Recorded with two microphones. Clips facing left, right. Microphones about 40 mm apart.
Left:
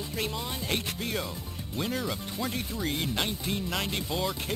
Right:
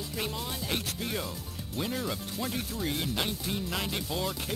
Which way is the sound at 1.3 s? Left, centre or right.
Centre.